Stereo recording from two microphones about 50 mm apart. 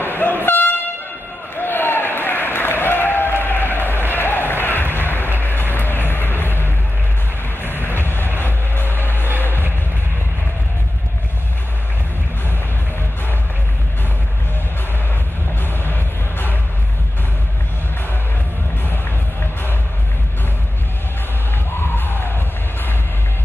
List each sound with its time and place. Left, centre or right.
0.0 s train: left
1.6 s applause: left
4.1 s a sound: left
4.9 s music: left
7.6 s train: left
8.7 s music: left
15.6 s music: left
21.7 s music: left